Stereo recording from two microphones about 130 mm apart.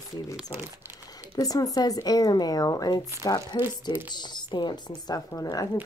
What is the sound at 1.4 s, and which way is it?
A woman's voice, 30° left (ahead or behind).